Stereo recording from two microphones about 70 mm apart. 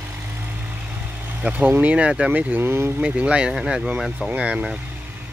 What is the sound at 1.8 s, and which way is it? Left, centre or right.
Speech, centre.